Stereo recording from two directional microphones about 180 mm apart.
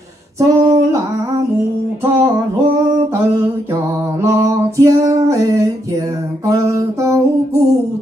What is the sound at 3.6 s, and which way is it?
Music, 15° right (ahead or behind).